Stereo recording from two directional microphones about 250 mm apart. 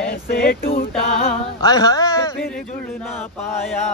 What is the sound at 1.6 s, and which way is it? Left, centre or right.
Speech, centre.